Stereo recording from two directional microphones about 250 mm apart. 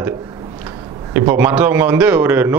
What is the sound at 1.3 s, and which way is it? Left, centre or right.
A man's voice, centre.